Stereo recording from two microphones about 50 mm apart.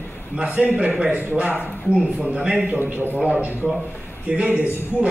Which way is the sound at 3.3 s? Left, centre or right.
Right.